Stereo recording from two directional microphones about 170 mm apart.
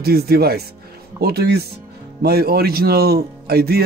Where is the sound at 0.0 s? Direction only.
65° right (ahead or behind).